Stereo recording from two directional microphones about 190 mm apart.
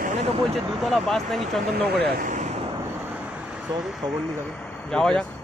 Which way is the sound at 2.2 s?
40° right (ahead or behind).